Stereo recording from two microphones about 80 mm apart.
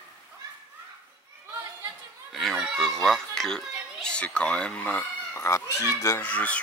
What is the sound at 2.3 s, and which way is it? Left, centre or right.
Children playing, centre.